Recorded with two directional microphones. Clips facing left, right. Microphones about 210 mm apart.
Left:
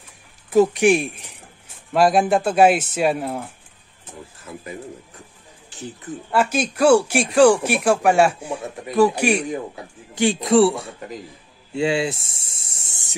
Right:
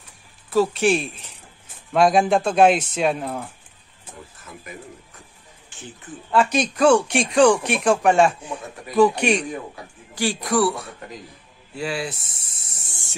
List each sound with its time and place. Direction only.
0.5 s speech: 15° left (ahead or behind)
2.0 s speech: centre (ahead or behind)
5.7 s speech: 40° left (ahead or behind)
6.3 s speech: 5° left (ahead or behind)
10.1 s speech: 20° left (ahead or behind)
11.7 s a sound: 25° left (ahead or behind)